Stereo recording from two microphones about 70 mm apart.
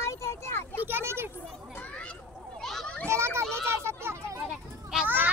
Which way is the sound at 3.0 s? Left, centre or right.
Right.